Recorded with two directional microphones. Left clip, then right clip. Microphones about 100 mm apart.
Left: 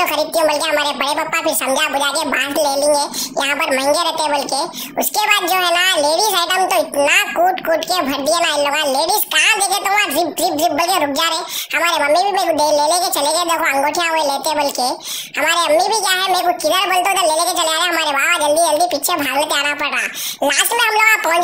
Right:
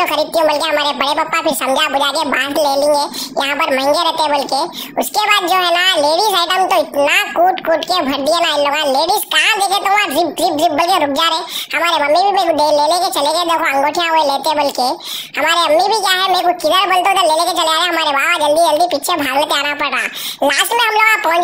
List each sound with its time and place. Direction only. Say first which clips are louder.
0.0 s speech: right 2 dB; 30° right (ahead or behind)